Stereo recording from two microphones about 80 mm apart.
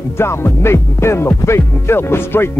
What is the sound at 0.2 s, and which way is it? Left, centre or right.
Music, left.